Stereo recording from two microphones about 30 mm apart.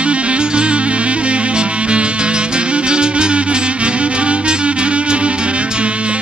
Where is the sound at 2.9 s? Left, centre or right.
Right.